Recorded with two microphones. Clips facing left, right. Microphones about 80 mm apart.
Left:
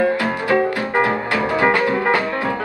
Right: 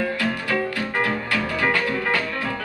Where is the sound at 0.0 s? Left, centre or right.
Left.